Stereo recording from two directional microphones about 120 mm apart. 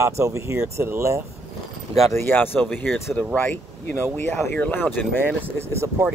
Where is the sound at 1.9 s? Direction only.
50° right (ahead or behind).